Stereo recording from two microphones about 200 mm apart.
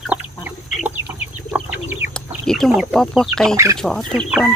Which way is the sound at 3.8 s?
Centre (ahead or behind).